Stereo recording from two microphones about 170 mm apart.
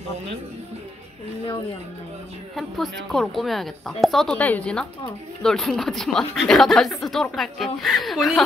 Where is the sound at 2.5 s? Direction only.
Centre (ahead or behind).